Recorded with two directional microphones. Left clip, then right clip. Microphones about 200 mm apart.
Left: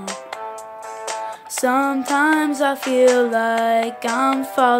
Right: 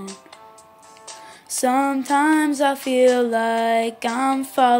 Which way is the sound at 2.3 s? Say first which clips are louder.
Even; 5° left (ahead or behind).